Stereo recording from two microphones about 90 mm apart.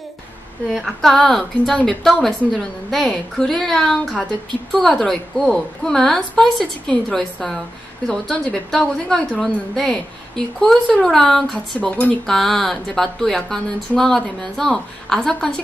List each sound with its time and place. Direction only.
0.7 s a woman's voice: centre (ahead or behind)
12.3 s a woman's voice: 5° left (ahead or behind)